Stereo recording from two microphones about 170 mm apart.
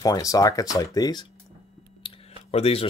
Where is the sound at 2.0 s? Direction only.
35° left (ahead or behind).